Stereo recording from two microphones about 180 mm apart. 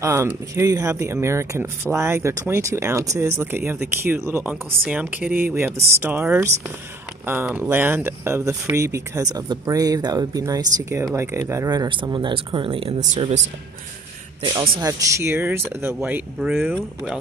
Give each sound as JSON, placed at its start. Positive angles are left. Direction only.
{"t": 0.0, "sound": "speech", "side_deg": -15}
{"t": 7.6, "sound": "speech", "side_deg": -10}
{"t": 14.4, "sound": "speech", "side_deg": -25}